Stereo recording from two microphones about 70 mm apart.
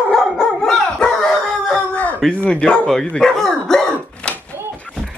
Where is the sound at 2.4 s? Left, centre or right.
Centre.